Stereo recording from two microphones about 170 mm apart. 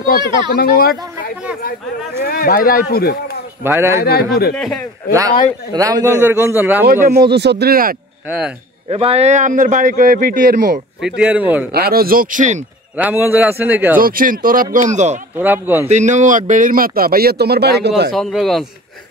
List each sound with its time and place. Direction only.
0.0 s speech: 65° left (ahead or behind)
3.6 s speech: 15° right (ahead or behind)
4.0 s speech: 70° left (ahead or behind)
4.6 s speech: 5° left (ahead or behind)
5.7 s speech: 20° right (ahead or behind)
6.9 s speech: 65° right (ahead or behind)
8.8 s a man's voice: 35° right (ahead or behind); by 10.8 s 50° right (ahead or behind)
11.0 s speech: 5° right (ahead or behind)
11.7 s speech: 65° right (ahead or behind)
12.9 s speech: 10° right (ahead or behind)
13.9 s speech: 55° right (ahead or behind)
15.3 s speech: 10° right (ahead or behind)
15.9 s speech: 45° right (ahead or behind); by 18.1 s 75° right (ahead or behind)
18.1 s speech: centre (ahead or behind)